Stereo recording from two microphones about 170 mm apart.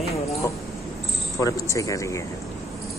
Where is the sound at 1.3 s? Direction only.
20° left (ahead or behind).